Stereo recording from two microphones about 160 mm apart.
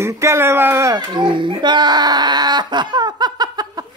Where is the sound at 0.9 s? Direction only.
30° right (ahead or behind).